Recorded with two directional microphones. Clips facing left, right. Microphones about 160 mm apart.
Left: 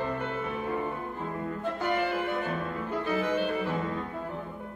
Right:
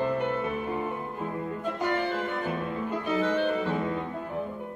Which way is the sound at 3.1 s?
10° left (ahead or behind).